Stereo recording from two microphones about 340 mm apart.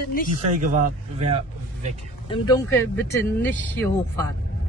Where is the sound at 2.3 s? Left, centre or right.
Centre.